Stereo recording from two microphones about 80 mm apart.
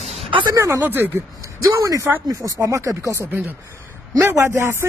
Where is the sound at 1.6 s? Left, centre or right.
Right.